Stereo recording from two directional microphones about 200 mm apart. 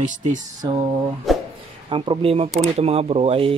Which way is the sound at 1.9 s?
25° right (ahead or behind).